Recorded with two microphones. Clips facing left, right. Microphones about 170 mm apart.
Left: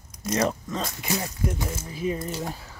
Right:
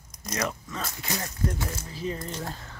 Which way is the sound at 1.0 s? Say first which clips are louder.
Left 1 dB; 10° left (ahead or behind).